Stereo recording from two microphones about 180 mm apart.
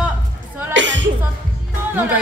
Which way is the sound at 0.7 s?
90° right.